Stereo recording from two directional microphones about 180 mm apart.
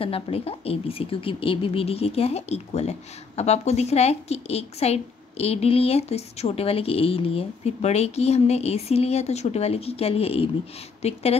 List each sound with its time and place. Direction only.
0.0 s a woman's voice: 35° left (ahead or behind)